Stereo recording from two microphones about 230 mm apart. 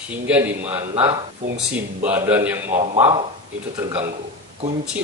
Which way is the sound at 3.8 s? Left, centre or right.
Centre.